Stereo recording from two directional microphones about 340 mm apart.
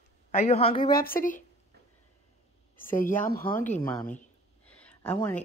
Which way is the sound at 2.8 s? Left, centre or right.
Left.